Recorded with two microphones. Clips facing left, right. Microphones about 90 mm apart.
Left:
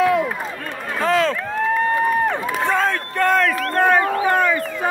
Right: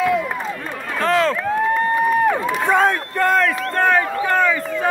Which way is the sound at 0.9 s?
5° left (ahead or behind).